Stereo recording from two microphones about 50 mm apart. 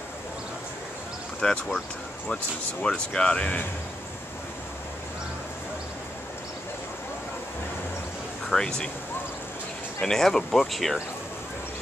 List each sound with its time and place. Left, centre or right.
1.4 s speech: centre
2.8 s speech: centre
8.5 s speech: centre
9.9 s speech: centre